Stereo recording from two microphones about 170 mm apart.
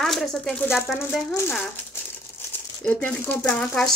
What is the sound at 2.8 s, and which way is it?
Speech, 10° left (ahead or behind).